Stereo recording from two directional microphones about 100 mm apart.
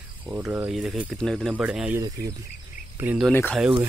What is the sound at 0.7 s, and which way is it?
Speech, 5° right (ahead or behind).